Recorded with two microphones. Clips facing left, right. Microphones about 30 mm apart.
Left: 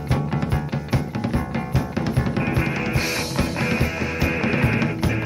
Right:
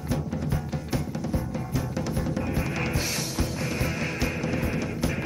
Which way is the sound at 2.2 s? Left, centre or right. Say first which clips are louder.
Left 6 dB; left.